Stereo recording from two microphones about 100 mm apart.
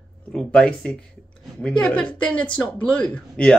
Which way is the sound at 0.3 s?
10° left (ahead or behind).